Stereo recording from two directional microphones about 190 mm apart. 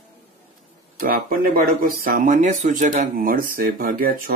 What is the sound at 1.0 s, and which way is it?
Speech, 50° right (ahead or behind).